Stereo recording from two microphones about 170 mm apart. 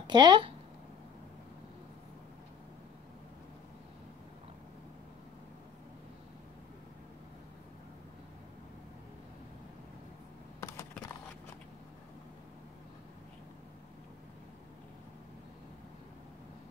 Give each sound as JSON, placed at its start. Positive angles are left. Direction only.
{"t": 0.0, "sound": "speech", "side_deg": -25}
{"t": 10.6, "sound": "computer keyboard", "side_deg": 15}